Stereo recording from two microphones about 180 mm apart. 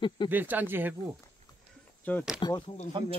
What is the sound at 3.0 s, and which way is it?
Speech, 25° right (ahead or behind).